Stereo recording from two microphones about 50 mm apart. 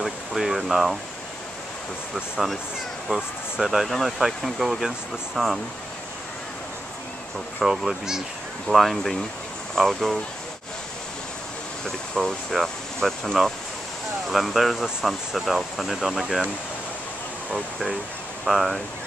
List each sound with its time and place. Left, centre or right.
0.0 s a sound: centre
3.5 s speech: centre
7.5 s speech: centre
11.8 s speech: centre
18.4 s speech: centre